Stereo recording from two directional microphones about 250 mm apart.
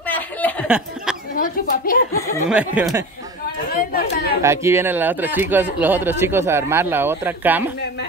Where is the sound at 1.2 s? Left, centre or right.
Left.